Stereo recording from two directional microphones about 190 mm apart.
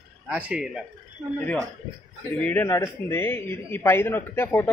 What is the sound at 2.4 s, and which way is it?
A man's voice, 10° left (ahead or behind).